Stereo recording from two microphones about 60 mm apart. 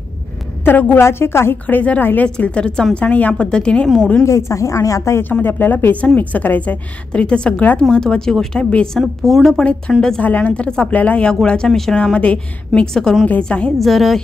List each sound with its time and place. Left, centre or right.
0.7 s speech: left
1.0 s a woman's voice: left
1.7 s a woman's voice: left
2.2 s a woman's voice: centre
3.4 s a woman's voice: centre
4.2 s speech: left
5.4 s a woman's voice: left; by 8.5 s centre
8.5 s a woman's voice: centre
9.2 s a woman's voice: centre
9.6 s a woman's voice: centre
10.2 s a woman's voice: left
12.9 s a woman's voice: centre
13.7 s a woman's voice: centre